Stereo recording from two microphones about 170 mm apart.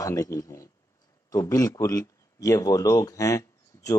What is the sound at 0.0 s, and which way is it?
A man's voice, 20° left (ahead or behind).